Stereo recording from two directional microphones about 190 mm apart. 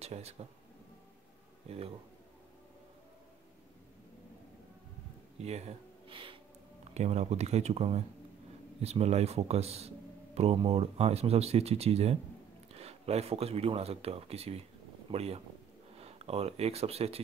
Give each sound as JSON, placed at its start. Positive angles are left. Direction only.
{"t": 0.0, "sound": "speech", "side_deg": -35}
{"t": 5.4, "sound": "a sound", "side_deg": -35}
{"t": 6.8, "sound": "speech", "side_deg": -35}